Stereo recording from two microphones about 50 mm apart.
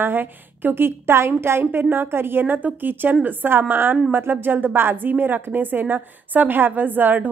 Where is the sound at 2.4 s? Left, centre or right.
Right.